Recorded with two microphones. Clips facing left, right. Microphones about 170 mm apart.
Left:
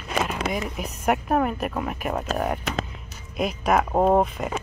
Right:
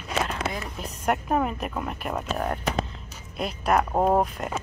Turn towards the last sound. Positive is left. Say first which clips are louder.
# left 3 dB
turn(degrees=0)  # may be behind; listen again after turning